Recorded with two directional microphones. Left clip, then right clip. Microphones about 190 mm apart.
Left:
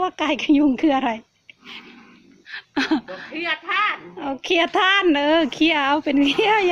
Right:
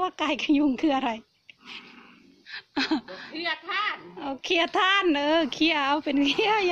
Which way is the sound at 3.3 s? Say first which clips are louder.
Left 7 dB; 10° left (ahead or behind).